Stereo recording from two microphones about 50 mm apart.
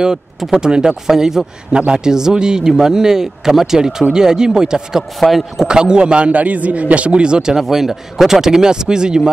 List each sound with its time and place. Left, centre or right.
0.4 s speech: centre
1.7 s speech: right
2.0 s speech: centre
5.2 s a man's voice: centre
5.7 s speech: centre
7.5 s speech: centre